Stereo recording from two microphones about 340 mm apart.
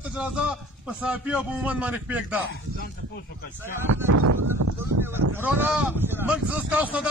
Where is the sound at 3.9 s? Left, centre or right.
Right.